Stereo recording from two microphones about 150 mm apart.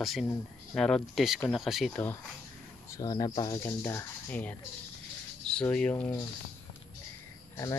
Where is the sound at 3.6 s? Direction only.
15° left (ahead or behind).